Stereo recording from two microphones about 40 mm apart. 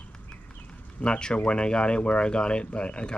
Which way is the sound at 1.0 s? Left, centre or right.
Left.